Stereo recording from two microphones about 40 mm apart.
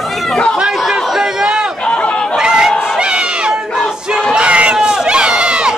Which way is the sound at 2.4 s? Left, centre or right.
Centre.